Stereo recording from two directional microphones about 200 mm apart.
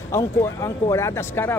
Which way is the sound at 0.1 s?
15° left (ahead or behind).